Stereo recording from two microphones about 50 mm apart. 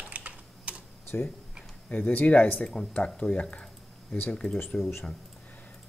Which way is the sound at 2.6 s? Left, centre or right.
Centre.